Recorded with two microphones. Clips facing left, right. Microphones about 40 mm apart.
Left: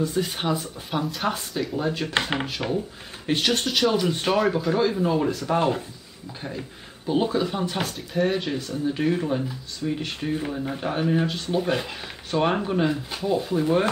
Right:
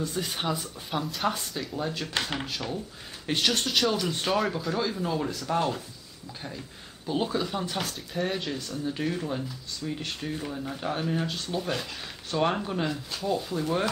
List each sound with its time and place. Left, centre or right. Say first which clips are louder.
0.0 s speech: left 5 dB; centre
1.7 s speech: left 5 dB; centre
2.1 s speech: left 5 dB; left
3.3 s speech: left 3 dB; centre
7.1 s speech: left 5 dB; centre
8.4 s speech: left 5 dB; centre